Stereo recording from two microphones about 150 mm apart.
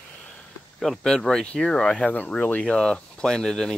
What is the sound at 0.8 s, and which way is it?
Speech, centre (ahead or behind).